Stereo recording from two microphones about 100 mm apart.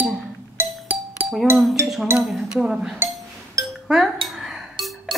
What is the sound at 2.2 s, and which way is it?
Speech, 5° right (ahead or behind).